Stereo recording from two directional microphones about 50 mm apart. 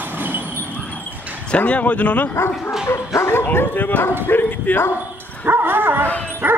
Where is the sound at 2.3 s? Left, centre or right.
Left.